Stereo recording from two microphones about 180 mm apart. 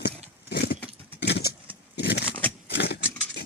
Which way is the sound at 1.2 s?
65° left (ahead or behind).